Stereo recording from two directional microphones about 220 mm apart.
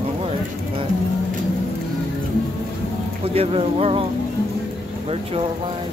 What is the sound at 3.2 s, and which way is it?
Speech, 25° right (ahead or behind).